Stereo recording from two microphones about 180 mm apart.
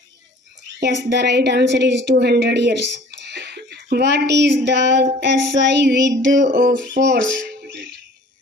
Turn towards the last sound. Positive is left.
turn(degrees=-65)  # may be behind; listen again after turning